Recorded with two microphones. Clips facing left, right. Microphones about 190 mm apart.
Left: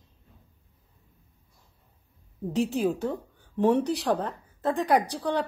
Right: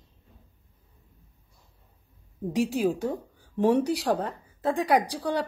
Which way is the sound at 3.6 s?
10° right (ahead or behind).